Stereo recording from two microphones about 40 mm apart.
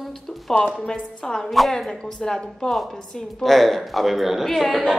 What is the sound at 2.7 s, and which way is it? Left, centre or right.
A woman's voice, centre.